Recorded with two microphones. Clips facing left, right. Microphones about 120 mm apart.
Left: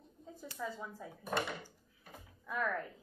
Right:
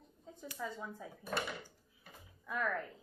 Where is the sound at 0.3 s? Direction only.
Centre (ahead or behind).